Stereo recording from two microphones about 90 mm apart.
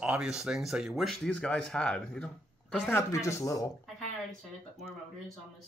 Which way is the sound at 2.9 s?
30° left (ahead or behind).